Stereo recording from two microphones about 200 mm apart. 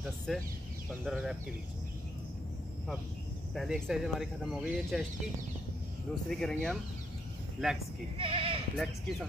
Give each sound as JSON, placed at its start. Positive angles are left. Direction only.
{"t": 0.3, "sound": "speech", "side_deg": 0}
{"t": 3.5, "sound": "speech", "side_deg": 0}
{"t": 6.2, "sound": "speech", "side_deg": 5}
{"t": 8.2, "sound": "speech", "side_deg": -25}
{"t": 8.7, "sound": "speech", "side_deg": 0}